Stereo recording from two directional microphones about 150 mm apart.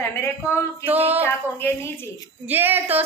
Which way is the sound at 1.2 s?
15° left (ahead or behind).